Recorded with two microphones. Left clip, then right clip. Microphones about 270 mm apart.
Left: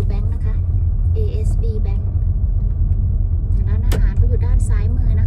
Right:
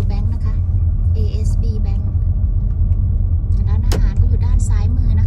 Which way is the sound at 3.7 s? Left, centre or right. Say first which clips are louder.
Right 2 dB; centre.